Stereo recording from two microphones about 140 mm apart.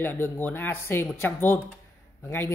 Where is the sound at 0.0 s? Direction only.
15° left (ahead or behind).